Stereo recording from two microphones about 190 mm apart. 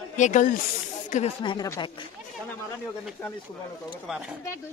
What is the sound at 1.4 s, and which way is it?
Speech, 20° left (ahead or behind).